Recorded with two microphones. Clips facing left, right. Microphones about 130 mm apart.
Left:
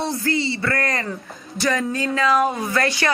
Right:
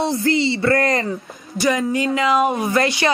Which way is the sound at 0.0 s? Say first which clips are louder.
Right 4 dB; 25° right (ahead or behind).